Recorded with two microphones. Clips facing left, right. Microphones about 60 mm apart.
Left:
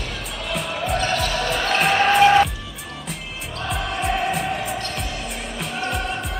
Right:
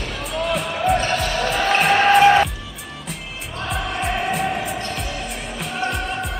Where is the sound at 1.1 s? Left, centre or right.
Centre.